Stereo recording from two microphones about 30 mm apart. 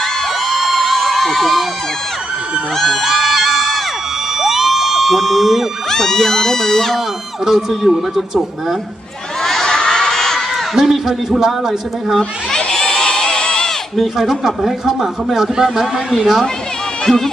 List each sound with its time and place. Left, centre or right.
0.5 s crowd: centre
3.0 s music: centre
4.4 s a sound: centre
5.9 s speech: centre
7.4 s speech: centre
9.7 s crowd: left
10.8 s speech: centre
12.2 s a sound: left
13.9 s speech: centre
17.0 s speech: centre